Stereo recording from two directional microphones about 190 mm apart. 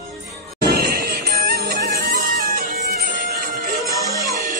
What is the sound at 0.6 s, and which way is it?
Music, 55° right (ahead or behind).